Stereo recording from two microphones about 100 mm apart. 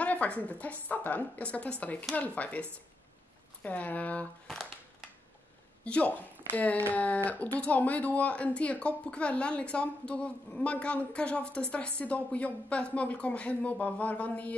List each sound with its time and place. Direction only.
0.0 s speech: 15° left (ahead or behind)
5.9 s speech: 15° left (ahead or behind)